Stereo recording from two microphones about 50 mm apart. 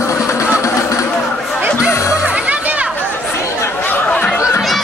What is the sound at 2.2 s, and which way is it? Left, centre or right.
Music, right.